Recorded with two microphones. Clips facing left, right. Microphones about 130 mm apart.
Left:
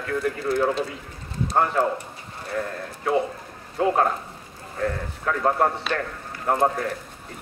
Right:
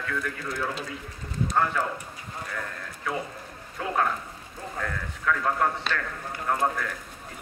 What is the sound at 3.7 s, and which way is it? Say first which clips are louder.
Speech: left 6 dB; 35° left (ahead or behind).